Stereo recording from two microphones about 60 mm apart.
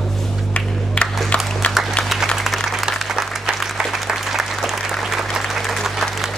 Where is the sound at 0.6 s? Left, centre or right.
Left.